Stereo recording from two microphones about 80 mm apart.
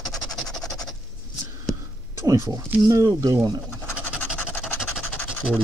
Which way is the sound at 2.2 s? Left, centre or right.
Right.